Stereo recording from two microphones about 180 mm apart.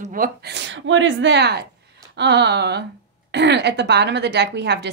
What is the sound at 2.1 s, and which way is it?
A woman's voice, 70° right (ahead or behind).